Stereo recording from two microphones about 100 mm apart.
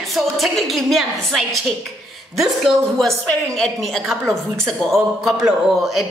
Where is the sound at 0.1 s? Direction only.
Centre (ahead or behind).